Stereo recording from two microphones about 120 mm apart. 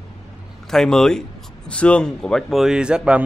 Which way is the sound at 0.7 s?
5° left (ahead or behind).